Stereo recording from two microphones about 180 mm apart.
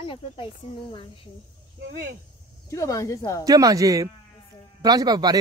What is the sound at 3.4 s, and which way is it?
Speech, 20° right (ahead or behind).